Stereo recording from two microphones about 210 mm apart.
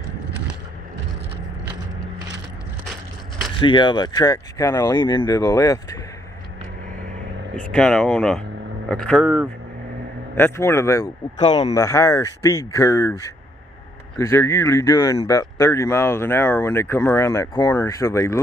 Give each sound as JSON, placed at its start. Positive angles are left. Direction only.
{"t": 3.5, "sound": "speech", "side_deg": 25}
{"t": 7.7, "sound": "speech", "side_deg": 5}
{"t": 10.3, "sound": "speech", "side_deg": 10}
{"t": 11.3, "sound": "a man's voice", "side_deg": 30}
{"t": 11.7, "sound": "speech", "side_deg": 15}